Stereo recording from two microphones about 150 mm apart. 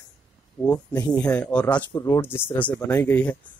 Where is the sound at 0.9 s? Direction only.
5° left (ahead or behind).